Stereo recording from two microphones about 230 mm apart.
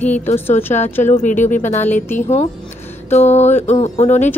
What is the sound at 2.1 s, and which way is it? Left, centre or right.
Music, left.